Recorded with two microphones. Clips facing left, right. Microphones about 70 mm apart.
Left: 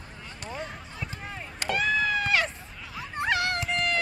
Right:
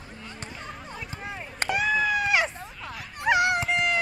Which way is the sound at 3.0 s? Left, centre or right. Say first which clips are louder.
Left 4 dB; left.